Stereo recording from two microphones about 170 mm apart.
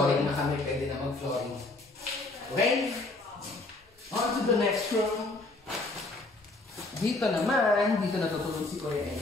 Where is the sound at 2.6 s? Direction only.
Centre (ahead or behind).